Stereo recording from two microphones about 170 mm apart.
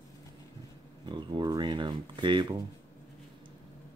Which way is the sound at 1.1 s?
25° right (ahead or behind).